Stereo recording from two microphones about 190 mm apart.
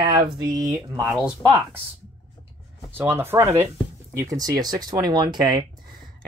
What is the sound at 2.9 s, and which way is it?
Speech, 10° right (ahead or behind).